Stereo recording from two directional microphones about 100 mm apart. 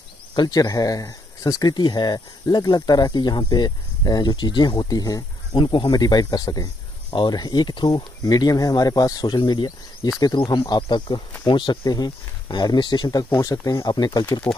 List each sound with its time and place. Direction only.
0.4 s speech: 40° left (ahead or behind)
5.6 s speech: 50° left (ahead or behind)
11.8 s speech: 40° left (ahead or behind)